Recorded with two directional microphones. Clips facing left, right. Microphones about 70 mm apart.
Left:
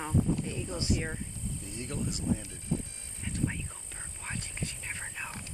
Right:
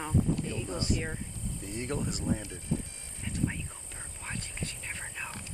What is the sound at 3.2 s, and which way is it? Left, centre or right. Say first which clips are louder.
Whispering: right 1 dB; centre.